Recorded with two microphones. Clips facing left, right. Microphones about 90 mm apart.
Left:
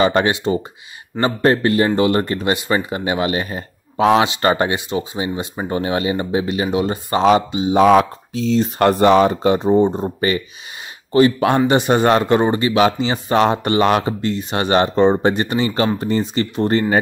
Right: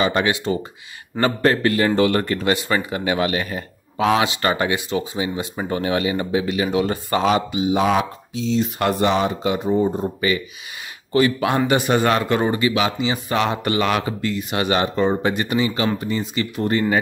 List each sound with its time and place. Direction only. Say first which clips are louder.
0.0 s speech: left 4 dB; 35° left (ahead or behind)
0.3 s speech: left 3 dB; 25° left (ahead or behind)
7.8 s speech: left 7 dB; 50° left (ahead or behind)
9.6 s speech: left 4 dB; 30° left (ahead or behind)
11.1 s speech: left 4 dB; 30° left (ahead or behind)